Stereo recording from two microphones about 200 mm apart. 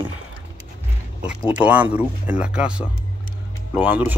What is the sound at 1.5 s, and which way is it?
Speech, 5° right (ahead or behind).